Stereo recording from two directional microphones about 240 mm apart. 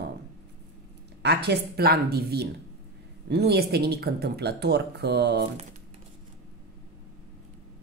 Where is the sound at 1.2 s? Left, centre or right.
Right.